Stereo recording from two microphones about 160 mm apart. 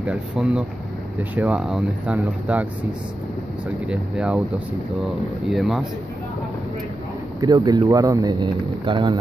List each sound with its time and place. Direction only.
0.0 s speech: 5° right (ahead or behind)
3.8 s speech: 5° right (ahead or behind)
5.5 s speech: centre (ahead or behind)
7.3 s speech: 20° right (ahead or behind)